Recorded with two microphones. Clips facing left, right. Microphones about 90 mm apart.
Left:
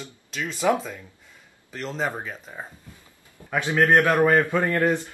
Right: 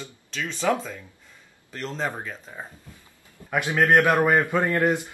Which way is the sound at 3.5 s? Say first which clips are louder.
Even; 15° right (ahead or behind).